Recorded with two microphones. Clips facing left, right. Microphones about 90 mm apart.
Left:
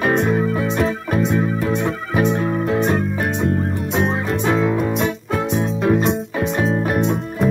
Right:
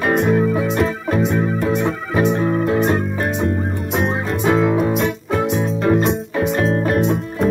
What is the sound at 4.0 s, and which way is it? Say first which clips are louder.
Music: even; 5° right (ahead or behind).